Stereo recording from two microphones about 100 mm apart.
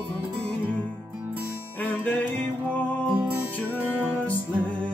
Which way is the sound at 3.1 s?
15° right (ahead or behind).